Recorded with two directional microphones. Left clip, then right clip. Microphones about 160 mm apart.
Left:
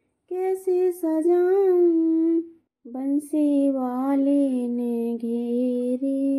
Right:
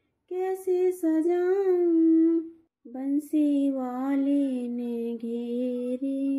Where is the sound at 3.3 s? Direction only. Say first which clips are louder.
Left 4 dB; 40° left (ahead or behind).